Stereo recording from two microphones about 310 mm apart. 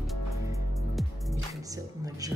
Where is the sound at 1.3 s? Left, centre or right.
Centre.